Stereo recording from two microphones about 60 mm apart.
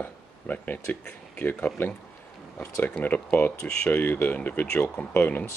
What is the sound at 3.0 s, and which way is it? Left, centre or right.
Speech, left.